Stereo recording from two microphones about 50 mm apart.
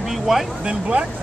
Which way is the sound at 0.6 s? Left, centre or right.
Right.